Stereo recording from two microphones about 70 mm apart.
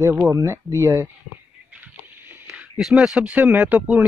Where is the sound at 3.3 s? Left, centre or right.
Right.